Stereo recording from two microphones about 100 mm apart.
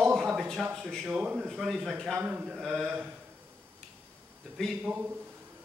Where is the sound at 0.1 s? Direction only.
5° right (ahead or behind).